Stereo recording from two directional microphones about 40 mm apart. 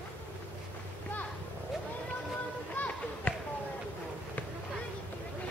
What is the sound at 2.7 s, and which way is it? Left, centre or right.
Music, left.